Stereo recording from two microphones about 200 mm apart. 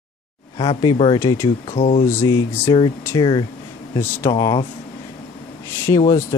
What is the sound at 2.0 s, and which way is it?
Speech, 15° left (ahead or behind).